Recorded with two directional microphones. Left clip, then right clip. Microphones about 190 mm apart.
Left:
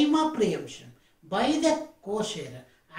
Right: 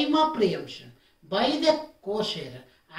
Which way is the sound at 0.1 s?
5° right (ahead or behind).